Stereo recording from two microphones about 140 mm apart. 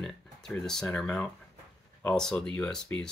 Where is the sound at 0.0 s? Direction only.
5° left (ahead or behind).